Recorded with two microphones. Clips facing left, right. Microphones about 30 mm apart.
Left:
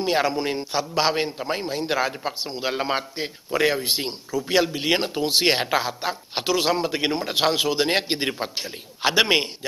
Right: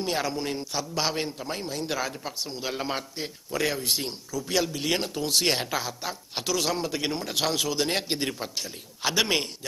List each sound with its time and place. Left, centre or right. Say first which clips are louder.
0.0 s a man's voice: left 6 dB; left